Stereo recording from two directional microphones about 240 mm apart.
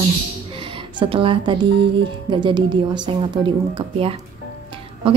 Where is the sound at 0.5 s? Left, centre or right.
Right.